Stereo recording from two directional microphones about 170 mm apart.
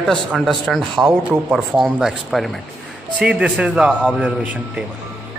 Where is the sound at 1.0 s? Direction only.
10° right (ahead or behind).